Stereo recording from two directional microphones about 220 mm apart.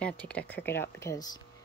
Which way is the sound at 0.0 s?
5° left (ahead or behind).